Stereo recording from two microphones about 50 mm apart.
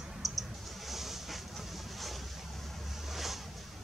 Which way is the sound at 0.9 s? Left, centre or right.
Centre.